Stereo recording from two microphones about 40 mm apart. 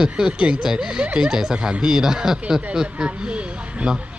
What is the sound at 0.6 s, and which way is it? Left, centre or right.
Speech, centre.